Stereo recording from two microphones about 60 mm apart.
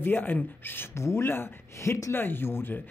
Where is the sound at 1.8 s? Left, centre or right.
Left.